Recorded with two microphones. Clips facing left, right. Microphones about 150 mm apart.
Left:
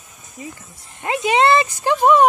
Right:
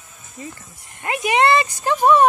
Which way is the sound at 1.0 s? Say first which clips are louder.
Left 1 dB; 25° left (ahead or behind).